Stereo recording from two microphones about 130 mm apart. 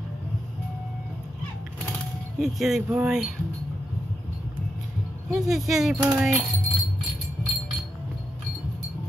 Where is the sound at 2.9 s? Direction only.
5° right (ahead or behind).